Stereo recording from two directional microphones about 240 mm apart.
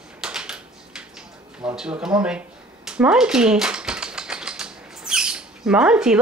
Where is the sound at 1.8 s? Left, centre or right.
Centre.